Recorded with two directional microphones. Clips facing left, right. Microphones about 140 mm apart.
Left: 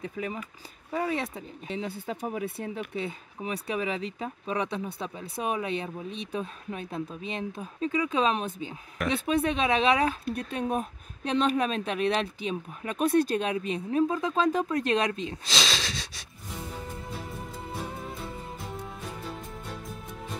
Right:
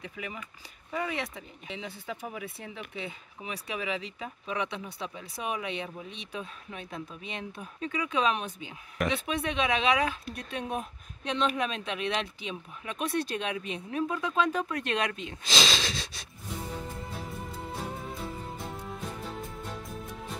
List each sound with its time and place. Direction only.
0.0 s speech: 35° left (ahead or behind)
9.0 s a woman's voice: centre (ahead or behind)
9.4 s speech: 35° left (ahead or behind)
15.4 s wheeze: centre (ahead or behind)